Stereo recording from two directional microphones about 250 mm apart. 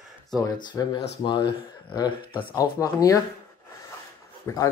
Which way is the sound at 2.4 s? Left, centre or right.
Centre.